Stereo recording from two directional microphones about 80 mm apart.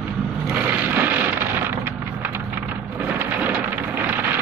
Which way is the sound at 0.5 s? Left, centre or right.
Right.